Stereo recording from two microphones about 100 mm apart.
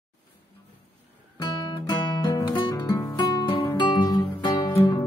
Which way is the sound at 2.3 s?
50° left (ahead or behind).